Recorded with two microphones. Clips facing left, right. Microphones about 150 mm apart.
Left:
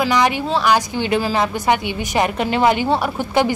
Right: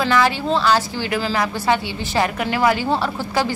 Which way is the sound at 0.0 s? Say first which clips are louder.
Left 1 dB; 20° left (ahead or behind).